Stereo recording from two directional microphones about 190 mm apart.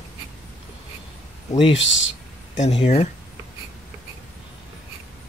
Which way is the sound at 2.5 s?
35° left (ahead or behind).